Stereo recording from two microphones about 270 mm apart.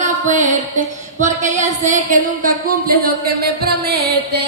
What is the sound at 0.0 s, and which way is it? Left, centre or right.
Music, right.